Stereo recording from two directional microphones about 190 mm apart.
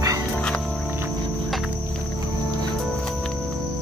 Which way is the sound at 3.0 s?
5° left (ahead or behind).